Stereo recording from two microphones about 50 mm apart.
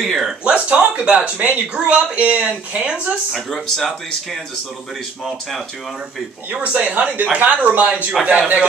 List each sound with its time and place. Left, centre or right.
0.0 s speech: centre
0.4 s speech: right
3.3 s speech: centre
6.5 s speech: right